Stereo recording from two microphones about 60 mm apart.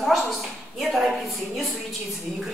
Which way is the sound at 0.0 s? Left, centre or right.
Centre.